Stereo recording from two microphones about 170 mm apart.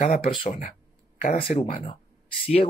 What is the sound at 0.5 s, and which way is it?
Speech, 50° left (ahead or behind).